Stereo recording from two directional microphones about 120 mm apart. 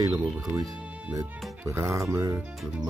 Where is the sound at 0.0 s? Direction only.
30° right (ahead or behind).